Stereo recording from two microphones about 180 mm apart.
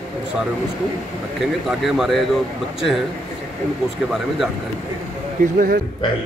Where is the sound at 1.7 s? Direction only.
Centre (ahead or behind).